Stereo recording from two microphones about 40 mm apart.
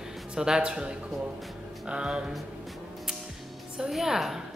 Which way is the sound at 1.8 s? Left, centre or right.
Right.